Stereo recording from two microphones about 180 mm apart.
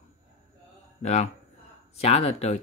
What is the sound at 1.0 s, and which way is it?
Speech, 40° left (ahead or behind).